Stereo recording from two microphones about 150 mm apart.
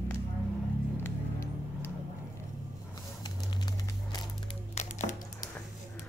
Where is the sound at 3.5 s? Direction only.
30° left (ahead or behind).